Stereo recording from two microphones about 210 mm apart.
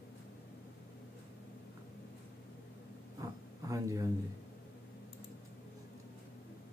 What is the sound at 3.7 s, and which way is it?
Speech, 15° right (ahead or behind).